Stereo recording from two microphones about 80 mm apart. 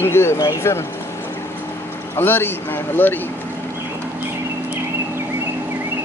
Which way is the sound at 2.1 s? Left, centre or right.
Left.